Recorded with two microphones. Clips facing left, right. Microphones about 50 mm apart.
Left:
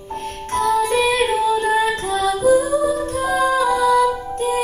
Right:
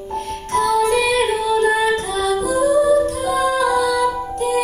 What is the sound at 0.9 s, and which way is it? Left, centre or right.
Female singing, left.